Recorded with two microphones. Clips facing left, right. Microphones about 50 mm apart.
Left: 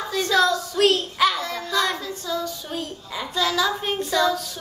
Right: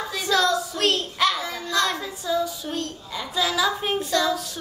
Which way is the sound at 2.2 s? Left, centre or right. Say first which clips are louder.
Right 4 dB; centre.